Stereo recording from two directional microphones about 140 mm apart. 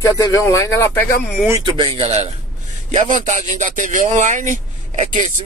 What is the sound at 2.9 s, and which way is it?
Speech, 60° right (ahead or behind).